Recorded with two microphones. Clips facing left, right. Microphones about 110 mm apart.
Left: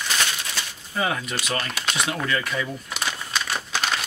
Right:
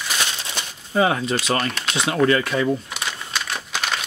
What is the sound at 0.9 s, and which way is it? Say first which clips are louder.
Speech: right 7 dB; 30° right (ahead or behind).